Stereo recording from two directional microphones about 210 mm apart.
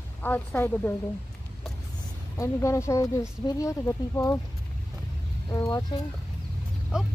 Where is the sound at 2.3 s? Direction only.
15° left (ahead or behind).